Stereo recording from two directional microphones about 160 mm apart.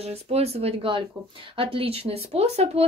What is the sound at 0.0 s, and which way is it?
Speech, 40° right (ahead or behind).